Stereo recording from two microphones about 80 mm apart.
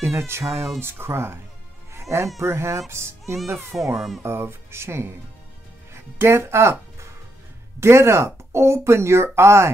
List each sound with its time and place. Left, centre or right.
0.0 s speech: right
0.5 s speech: centre
0.7 s speech: right
2.0 s music: right
2.4 s speech: right
3.9 s speech: centre
4.2 s speech: right